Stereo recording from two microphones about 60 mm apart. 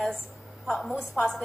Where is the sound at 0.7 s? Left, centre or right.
Centre.